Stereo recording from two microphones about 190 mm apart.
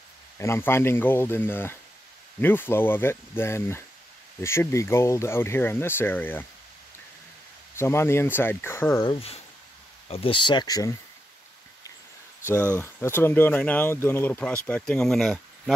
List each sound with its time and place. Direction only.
0.4 s speech: 15° left (ahead or behind)
7.7 s speech: 15° left (ahead or behind)
9.0 s speech: 30° left (ahead or behind)
12.7 s speech: 10° left (ahead or behind)